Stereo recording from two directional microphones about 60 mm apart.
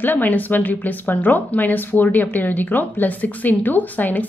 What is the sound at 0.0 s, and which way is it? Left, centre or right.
A woman's voice, left.